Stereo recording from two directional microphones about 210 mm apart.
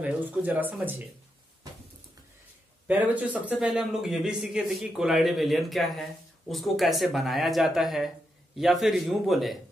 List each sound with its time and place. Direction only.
0.0 s speech: 10° right (ahead or behind)
2.9 s a man's voice: 5° right (ahead or behind)